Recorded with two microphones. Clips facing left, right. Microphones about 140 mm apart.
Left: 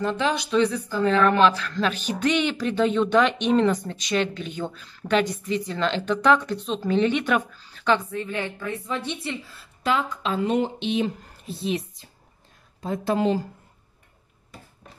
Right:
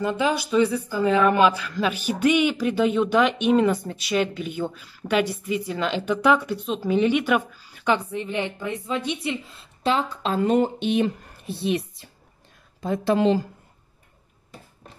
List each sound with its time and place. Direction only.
0.0 s speech: 10° right (ahead or behind); by 12.1 s 65° right (ahead or behind)
12.8 s speech: 80° right